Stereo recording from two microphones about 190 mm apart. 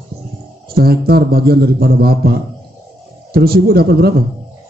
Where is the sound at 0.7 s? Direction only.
55° right (ahead or behind).